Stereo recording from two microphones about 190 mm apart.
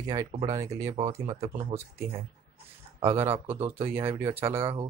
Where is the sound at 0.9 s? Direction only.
30° right (ahead or behind).